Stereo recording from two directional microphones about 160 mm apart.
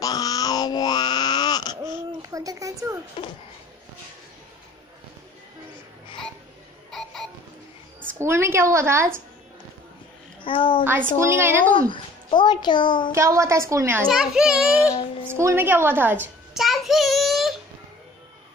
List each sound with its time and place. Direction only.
0.0 s a sound: 25° left (ahead or behind)
2.3 s a woman's voice: 20° right (ahead or behind)
6.9 s a sound: centre (ahead or behind)
8.2 s a woman's voice: 15° right (ahead or behind)
10.4 s a child's voice: 30° left (ahead or behind)
10.8 s a woman's voice: 15° right (ahead or behind)
11.7 s a child's voice: 30° left (ahead or behind)
13.1 s a woman's voice: 20° right (ahead or behind)
14.0 s a child's voice: 5° right (ahead or behind)
15.2 s a woman's voice: 15° right (ahead or behind)
16.5 s child singing: centre (ahead or behind)